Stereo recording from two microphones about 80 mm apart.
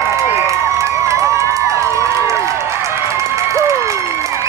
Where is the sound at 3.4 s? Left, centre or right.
Right.